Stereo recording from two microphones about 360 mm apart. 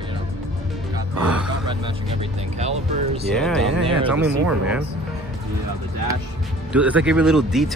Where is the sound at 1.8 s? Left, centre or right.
Centre.